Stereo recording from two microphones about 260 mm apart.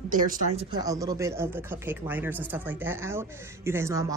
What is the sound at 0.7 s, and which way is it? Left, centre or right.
Speech, centre.